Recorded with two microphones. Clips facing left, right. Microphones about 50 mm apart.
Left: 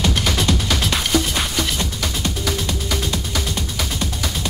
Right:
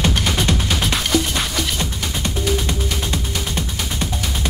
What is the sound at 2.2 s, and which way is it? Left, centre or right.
Music, right.